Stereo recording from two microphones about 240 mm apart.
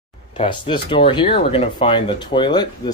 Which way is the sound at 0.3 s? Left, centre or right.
Left.